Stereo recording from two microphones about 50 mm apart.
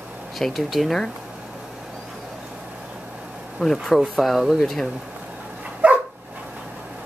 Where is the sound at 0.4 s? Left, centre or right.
Centre.